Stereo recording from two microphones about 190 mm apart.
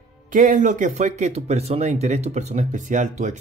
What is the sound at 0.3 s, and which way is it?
Speech, 45° right (ahead or behind).